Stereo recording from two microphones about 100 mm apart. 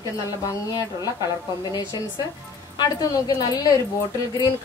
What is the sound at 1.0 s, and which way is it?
A woman's voice, 40° left (ahead or behind).